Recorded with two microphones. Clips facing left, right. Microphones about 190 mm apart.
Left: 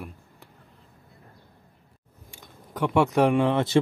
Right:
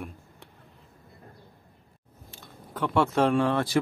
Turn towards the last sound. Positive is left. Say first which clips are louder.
# left 3 dB
turn(degrees=20)  # may be behind; listen again after turning